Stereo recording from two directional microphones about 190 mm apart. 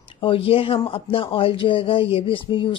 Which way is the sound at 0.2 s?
30° left (ahead or behind).